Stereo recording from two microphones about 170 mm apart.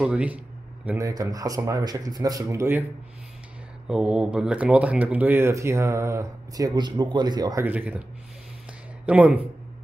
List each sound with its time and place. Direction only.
0.0 s speech: 10° right (ahead or behind)
0.8 s a man's voice: 20° right (ahead or behind)
3.9 s speech: 5° right (ahead or behind); by 7.6 s 25° right (ahead or behind)
7.6 s speech: 10° right (ahead or behind)
9.0 s speech: 10° right (ahead or behind)